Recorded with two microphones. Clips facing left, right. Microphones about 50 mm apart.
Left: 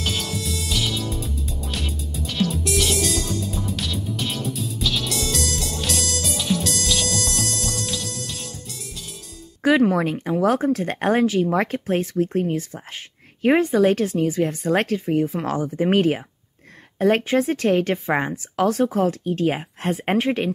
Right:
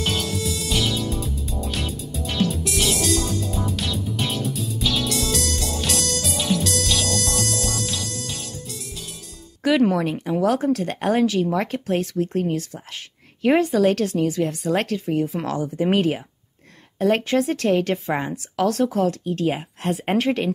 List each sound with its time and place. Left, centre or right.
0.0 s music: centre
10.4 s speech: left
13.5 s speech: left
14.4 s speech: left
17.3 s speech: left
20.1 s speech: centre